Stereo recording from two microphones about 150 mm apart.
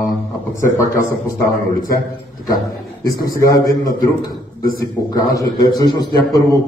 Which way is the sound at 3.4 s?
25° left (ahead or behind).